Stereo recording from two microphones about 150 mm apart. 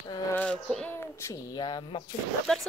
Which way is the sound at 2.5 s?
Centre (ahead or behind).